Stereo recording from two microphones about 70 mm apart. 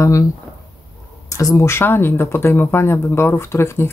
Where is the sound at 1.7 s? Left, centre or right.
Left.